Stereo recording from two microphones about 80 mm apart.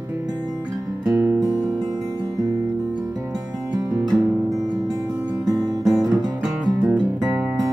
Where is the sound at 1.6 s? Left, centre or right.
Right.